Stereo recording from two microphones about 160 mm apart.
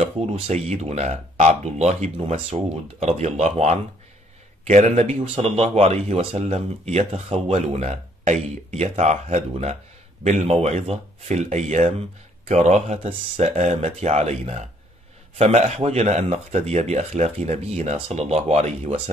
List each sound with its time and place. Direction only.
0.0 s speech: 45° right (ahead or behind)